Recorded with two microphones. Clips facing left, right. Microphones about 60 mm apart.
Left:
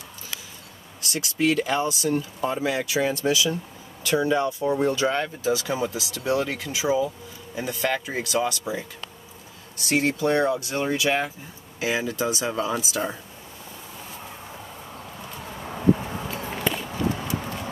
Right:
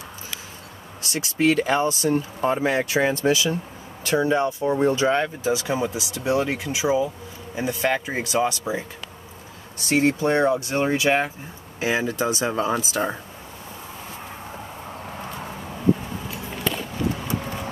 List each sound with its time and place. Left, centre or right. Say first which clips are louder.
1.1 s speech: right 3 dB; right
16.4 s walk: right 1 dB; centre